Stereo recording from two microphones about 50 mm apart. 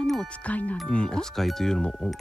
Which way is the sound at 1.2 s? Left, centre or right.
Centre.